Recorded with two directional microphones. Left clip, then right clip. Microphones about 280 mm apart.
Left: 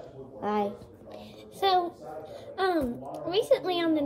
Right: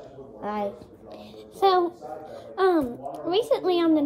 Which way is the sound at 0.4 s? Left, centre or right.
Centre.